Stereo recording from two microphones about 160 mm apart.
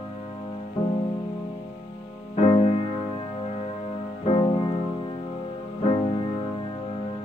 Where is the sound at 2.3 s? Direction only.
40° left (ahead or behind).